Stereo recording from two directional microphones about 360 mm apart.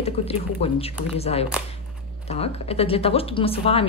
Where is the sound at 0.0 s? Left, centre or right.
Centre.